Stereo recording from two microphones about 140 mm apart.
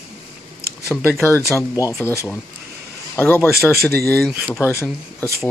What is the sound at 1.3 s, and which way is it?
Speech, 20° left (ahead or behind).